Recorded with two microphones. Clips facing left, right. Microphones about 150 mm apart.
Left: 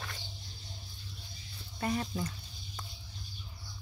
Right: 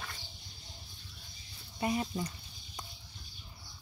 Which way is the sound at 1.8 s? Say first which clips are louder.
Right 1 dB; 10° right (ahead or behind).